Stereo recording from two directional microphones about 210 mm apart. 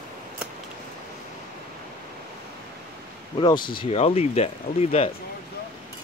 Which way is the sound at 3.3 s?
20° left (ahead or behind).